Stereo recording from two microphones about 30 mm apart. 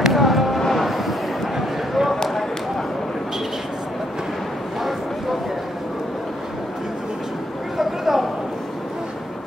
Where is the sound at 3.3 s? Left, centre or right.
Centre.